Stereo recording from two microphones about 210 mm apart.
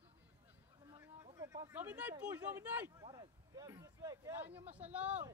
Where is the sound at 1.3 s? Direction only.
15° right (ahead or behind).